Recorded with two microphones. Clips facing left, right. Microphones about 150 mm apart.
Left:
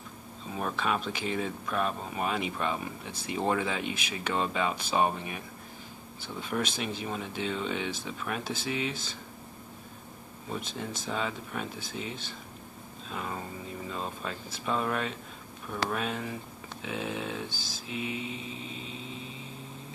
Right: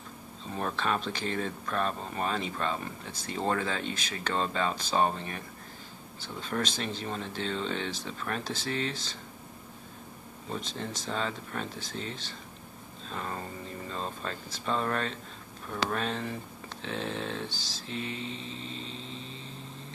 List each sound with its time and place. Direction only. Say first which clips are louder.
0.5 s speech: even; 5° left (ahead or behind)
6.4 s speech: even; 10° left (ahead or behind)
11.1 s speech: even; 10° left (ahead or behind)
17.5 s speech: left 1 dB; 50° left (ahead or behind)
17.8 s speech: left 1 dB; 10° left (ahead or behind)